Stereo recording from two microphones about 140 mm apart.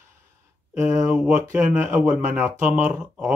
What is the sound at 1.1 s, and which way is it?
Speech, 5° right (ahead or behind).